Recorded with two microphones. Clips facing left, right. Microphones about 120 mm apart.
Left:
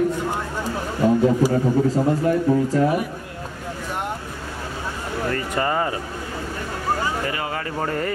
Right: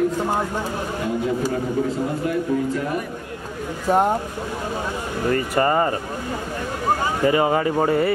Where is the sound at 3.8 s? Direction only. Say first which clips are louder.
Right 12 dB; 40° right (ahead or behind).